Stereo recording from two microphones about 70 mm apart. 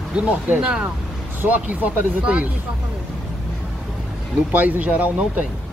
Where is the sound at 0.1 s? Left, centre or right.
Centre.